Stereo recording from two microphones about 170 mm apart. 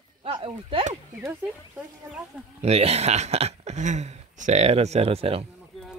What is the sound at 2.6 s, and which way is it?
Speech, 35° right (ahead or behind).